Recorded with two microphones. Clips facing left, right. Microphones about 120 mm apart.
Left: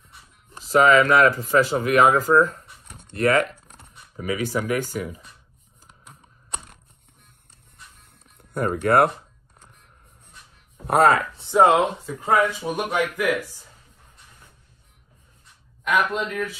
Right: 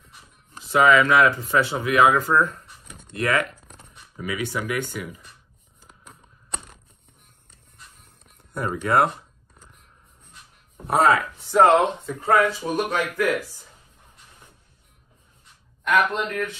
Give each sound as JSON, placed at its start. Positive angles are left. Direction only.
{"t": 0.7, "sound": "speech", "side_deg": 40}
{"t": 8.5, "sound": "speech", "side_deg": 50}
{"t": 10.9, "sound": "speech", "side_deg": 50}
{"t": 11.5, "sound": "speech", "side_deg": 10}
{"t": 15.8, "sound": "a man's voice", "side_deg": 5}